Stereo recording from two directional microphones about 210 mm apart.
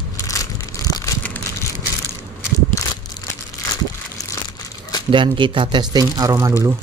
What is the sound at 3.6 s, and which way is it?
Crumpling, 15° left (ahead or behind).